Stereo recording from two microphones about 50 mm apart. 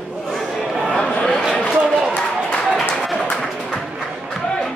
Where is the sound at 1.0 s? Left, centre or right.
Left.